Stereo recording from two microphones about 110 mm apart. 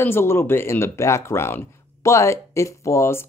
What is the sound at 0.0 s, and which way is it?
Speech, 20° left (ahead or behind).